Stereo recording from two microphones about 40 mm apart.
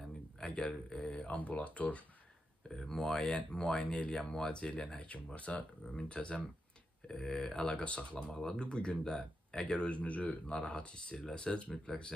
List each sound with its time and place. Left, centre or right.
0.4 s a sound: left
0.8 s speech: left
2.7 s speech: centre
3.8 s speech: left
4.1 s speech: centre
4.9 s speech: left
7.1 s speech: centre
7.6 s speech: left